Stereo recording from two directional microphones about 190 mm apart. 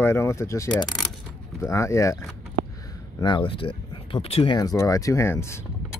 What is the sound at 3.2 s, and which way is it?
Speech, 25° left (ahead or behind).